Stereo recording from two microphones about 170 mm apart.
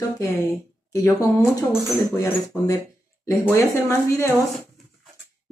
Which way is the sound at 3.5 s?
15° left (ahead or behind).